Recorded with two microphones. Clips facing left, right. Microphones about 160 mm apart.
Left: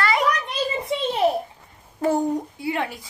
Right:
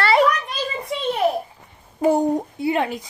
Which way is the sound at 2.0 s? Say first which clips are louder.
Right 3 dB; 15° right (ahead or behind).